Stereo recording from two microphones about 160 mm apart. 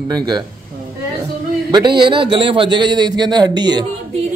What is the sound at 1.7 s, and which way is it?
A man's voice, 30° right (ahead or behind).